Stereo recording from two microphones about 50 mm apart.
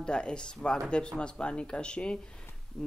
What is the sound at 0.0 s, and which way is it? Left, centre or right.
Speech, centre.